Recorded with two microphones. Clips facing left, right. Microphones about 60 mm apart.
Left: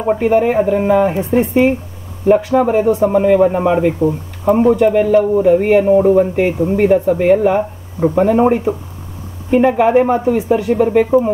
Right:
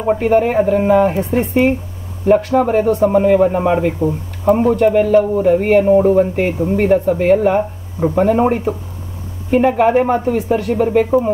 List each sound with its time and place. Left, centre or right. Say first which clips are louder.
0.0 s speech: left 1 dB; centre